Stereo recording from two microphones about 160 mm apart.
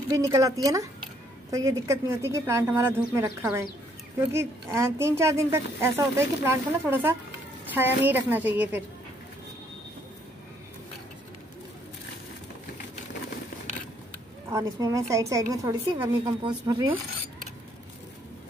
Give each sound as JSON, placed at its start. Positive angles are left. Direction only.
{"t": 0.1, "sound": "a woman's voice", "side_deg": -20}
{"t": 14.5, "sound": "a woman's voice", "side_deg": -20}